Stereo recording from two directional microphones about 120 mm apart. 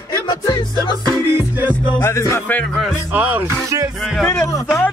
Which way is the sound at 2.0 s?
25° left (ahead or behind).